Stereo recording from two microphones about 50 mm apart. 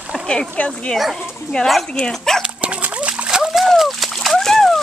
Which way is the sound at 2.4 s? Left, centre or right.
Right.